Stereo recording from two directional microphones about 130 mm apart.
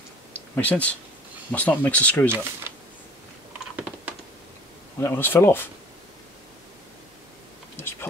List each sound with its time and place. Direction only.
0.3 s a sound: 10° left (ahead or behind)
1.5 s speech: 10° left (ahead or behind)
5.0 s speech: 15° left (ahead or behind)
7.7 s insect: 15° left (ahead or behind)